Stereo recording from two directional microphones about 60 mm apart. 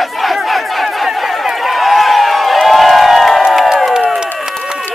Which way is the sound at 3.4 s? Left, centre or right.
Centre.